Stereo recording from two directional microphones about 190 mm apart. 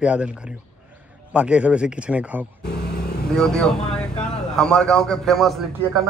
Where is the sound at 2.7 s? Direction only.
60° left (ahead or behind).